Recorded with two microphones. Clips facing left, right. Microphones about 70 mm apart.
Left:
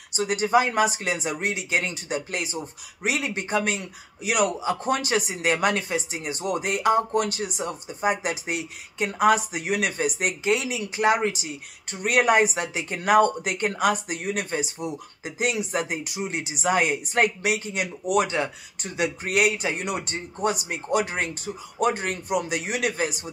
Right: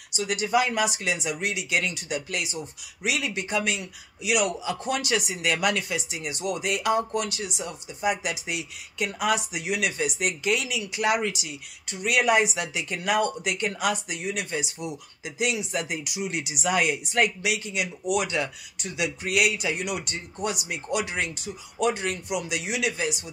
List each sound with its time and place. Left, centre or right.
0.1 s speech: left